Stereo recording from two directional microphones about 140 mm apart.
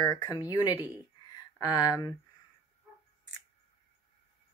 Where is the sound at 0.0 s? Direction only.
20° left (ahead or behind).